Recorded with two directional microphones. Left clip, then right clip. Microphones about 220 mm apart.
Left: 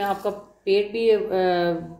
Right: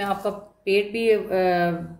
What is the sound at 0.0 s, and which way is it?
Speech, 15° right (ahead or behind).